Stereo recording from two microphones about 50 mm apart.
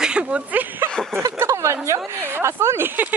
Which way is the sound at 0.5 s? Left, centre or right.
Right.